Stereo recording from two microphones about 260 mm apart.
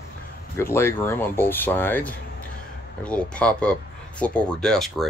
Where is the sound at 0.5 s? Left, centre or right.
Centre.